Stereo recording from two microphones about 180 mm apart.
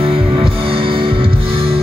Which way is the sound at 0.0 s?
30° right (ahead or behind).